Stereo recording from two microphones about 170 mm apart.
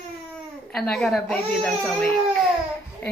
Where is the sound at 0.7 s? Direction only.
5° left (ahead or behind).